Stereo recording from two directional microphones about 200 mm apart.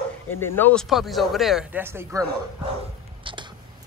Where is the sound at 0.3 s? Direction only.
10° left (ahead or behind); by 2.2 s 10° right (ahead or behind).